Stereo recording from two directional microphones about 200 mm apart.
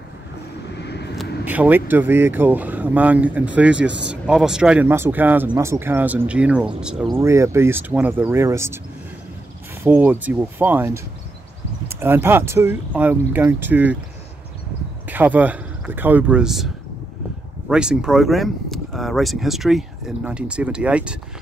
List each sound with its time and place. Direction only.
0.7 s vehicle: 55° left (ahead or behind)
1.1 s speech: 5° right (ahead or behind)
7.2 s speech: 15° right (ahead or behind)
9.8 s speech: 10° right (ahead or behind)
15.0 s speech: 10° right (ahead or behind)